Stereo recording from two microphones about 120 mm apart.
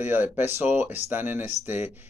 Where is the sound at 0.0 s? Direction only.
20° right (ahead or behind).